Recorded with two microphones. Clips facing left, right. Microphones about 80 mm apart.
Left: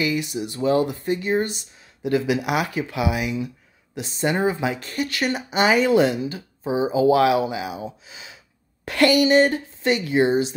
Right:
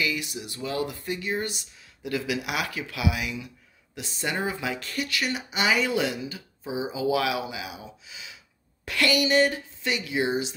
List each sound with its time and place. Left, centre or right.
0.0 s speech: left